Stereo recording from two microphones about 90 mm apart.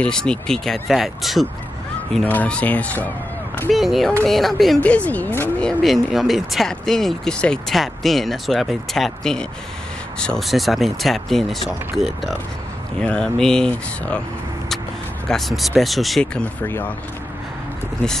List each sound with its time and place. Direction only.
0.0 s speech: 10° left (ahead or behind)
2.2 s speech: 15° left (ahead or behind)
3.7 s speech: centre (ahead or behind)
4.7 s speech: 15° left (ahead or behind)
5.6 s speech: 5° left (ahead or behind)
13.0 s speech: 10° left (ahead or behind)
15.2 s speech: 5° left (ahead or behind)
16.6 s speech: 25° left (ahead or behind)